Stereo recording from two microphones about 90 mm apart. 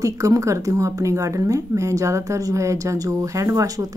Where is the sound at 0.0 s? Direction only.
35° right (ahead or behind).